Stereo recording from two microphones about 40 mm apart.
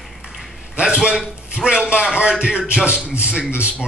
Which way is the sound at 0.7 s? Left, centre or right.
Right.